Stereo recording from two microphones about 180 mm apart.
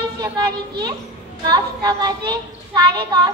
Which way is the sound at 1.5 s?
20° right (ahead or behind).